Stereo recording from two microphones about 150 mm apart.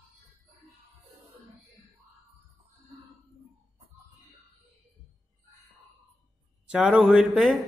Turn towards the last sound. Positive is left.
turn(degrees=0)  # may be behind; listen again after turning